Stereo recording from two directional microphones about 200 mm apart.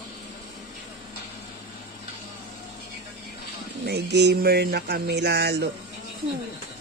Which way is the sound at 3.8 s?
55° right (ahead or behind).